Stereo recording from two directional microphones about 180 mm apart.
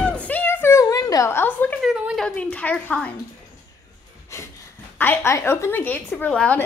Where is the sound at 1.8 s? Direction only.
5° right (ahead or behind).